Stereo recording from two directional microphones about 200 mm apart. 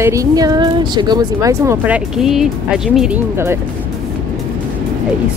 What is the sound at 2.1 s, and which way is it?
Speech, centre (ahead or behind).